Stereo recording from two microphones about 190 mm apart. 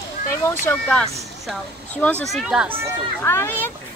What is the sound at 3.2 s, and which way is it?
Speech, 10° left (ahead or behind).